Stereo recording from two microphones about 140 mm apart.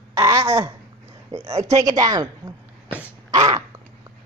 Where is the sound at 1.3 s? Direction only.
45° right (ahead or behind).